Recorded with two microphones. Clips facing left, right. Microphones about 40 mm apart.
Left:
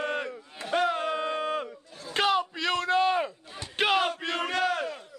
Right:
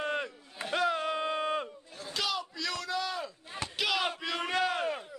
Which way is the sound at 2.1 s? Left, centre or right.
Left.